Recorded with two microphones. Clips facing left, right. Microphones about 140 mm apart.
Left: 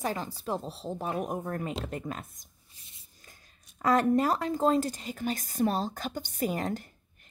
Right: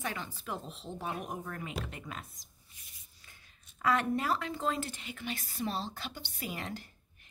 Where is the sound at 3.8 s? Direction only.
40° left (ahead or behind).